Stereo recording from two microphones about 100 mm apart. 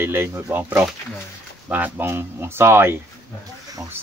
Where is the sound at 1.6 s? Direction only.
15° right (ahead or behind).